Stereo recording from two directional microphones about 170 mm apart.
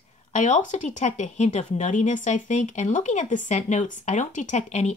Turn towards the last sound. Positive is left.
turn(degrees=40)  # may be behind; listen again after turning